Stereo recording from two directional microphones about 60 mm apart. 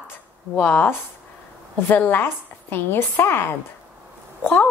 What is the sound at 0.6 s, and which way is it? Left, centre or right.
Speech, left.